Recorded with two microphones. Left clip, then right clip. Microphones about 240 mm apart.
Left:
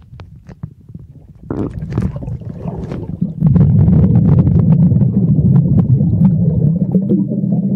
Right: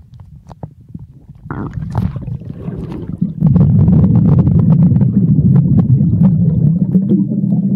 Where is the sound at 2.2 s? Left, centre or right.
Centre.